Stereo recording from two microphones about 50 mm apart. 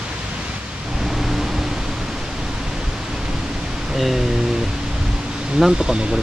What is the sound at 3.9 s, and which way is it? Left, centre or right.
Music, centre.